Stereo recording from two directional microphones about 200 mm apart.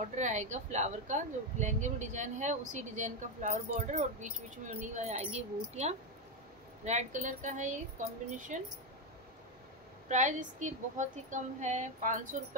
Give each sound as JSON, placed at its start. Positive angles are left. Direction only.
{"t": 0.0, "sound": "speech", "side_deg": -35}
{"t": 10.0, "sound": "speech", "side_deg": -40}